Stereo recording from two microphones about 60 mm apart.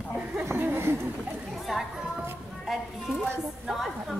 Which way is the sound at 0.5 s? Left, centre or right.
Right.